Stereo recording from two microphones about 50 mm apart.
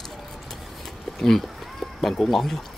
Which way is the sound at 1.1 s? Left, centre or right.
Centre.